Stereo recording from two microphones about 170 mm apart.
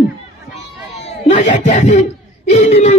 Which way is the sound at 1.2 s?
50° left (ahead or behind).